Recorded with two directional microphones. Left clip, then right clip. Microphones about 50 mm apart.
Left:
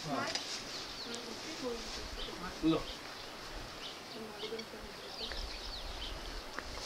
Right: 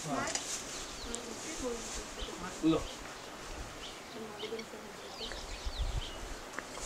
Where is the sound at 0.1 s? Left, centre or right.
Centre.